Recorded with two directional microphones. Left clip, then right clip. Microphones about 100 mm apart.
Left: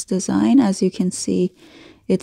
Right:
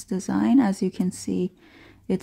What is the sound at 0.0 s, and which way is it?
Speech, 40° left (ahead or behind).